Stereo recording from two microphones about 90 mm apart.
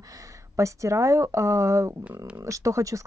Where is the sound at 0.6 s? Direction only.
35° right (ahead or behind).